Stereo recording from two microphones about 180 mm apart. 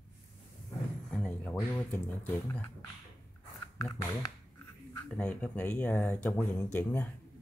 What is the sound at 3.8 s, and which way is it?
Speech, 20° left (ahead or behind).